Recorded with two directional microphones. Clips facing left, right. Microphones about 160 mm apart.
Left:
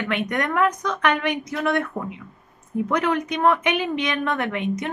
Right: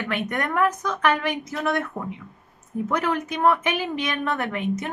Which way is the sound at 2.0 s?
20° left (ahead or behind).